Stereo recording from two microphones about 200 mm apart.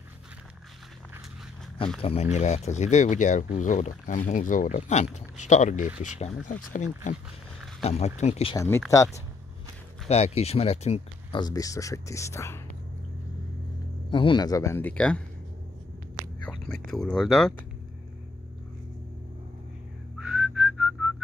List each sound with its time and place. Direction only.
2.0 s speech: 30° left (ahead or behind)
8.5 s speech: 10° left (ahead or behind)
10.0 s speech: 30° left (ahead or behind)
11.4 s speech: 20° left (ahead or behind)
14.1 s speech: 25° left (ahead or behind); by 15.2 s 5° left (ahead or behind)
16.4 s whispering: 5° left (ahead or behind)
16.9 s speech: centre (ahead or behind)
20.2 s whistling: 5° right (ahead or behind)